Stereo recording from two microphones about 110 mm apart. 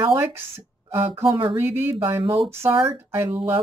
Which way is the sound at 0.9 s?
25° right (ahead or behind).